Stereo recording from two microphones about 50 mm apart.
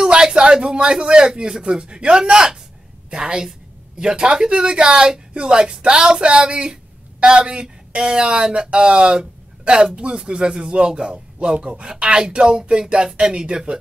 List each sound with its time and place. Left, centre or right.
0.0 s speech: centre